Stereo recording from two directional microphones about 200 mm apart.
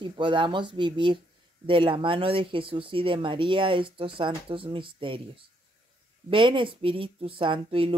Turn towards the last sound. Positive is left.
turn(degrees=-25)  # may be behind; listen again after turning